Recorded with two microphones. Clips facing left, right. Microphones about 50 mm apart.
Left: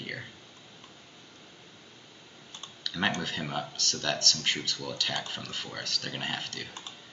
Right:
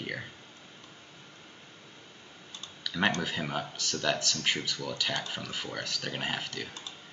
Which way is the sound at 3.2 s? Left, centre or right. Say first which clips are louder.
Right 1 dB; centre.